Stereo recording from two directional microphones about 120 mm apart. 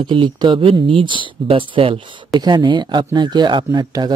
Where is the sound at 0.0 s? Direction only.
40° right (ahead or behind).